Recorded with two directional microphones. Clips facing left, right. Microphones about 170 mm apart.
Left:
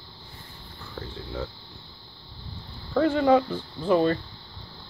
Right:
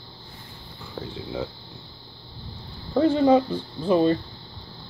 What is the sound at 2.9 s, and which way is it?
Speech, 20° right (ahead or behind).